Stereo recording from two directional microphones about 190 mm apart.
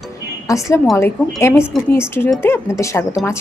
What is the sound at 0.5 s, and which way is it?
A woman's voice, 15° left (ahead or behind).